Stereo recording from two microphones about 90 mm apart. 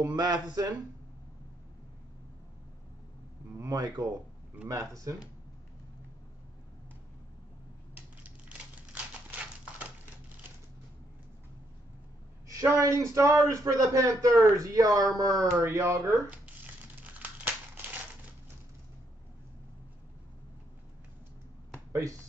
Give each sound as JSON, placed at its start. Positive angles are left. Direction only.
{"t": 0.0, "sound": "speech", "side_deg": -45}
{"t": 3.5, "sound": "speech", "side_deg": -40}
{"t": 4.6, "sound": "speech", "side_deg": -35}
{"t": 7.9, "sound": "a sound", "side_deg": -20}
{"t": 12.4, "sound": "speech", "side_deg": -40}